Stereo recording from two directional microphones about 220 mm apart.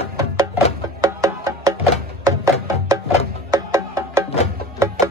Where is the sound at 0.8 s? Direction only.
15° right (ahead or behind).